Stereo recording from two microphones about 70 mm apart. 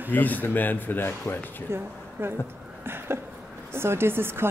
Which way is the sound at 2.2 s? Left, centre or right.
Right.